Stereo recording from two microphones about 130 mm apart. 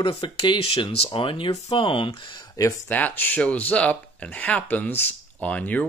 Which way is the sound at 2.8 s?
15° left (ahead or behind).